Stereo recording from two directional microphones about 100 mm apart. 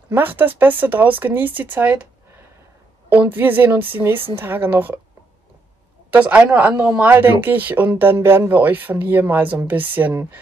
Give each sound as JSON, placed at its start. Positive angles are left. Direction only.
{"t": 0.1, "sound": "speech", "side_deg": -20}
{"t": 3.1, "sound": "speech", "side_deg": -20}
{"t": 6.0, "sound": "speech", "side_deg": -15}